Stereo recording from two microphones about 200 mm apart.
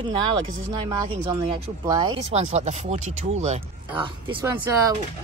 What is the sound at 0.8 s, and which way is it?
Speech, 20° right (ahead or behind).